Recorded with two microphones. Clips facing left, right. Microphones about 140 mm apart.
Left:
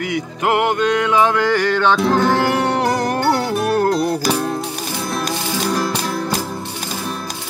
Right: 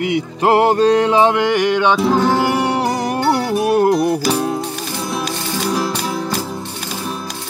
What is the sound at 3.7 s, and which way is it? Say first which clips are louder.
Music: right 4 dB; 20° right (ahead or behind).